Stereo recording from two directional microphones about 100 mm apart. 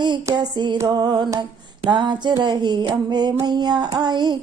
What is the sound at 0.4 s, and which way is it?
Female singing, 50° right (ahead or behind).